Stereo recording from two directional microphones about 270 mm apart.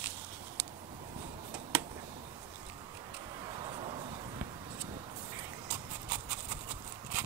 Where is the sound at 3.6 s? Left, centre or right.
Centre.